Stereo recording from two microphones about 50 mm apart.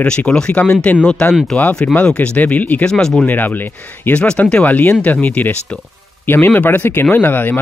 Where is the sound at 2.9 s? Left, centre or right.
Centre.